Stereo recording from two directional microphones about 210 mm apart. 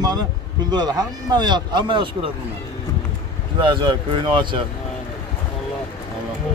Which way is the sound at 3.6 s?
20° right (ahead or behind).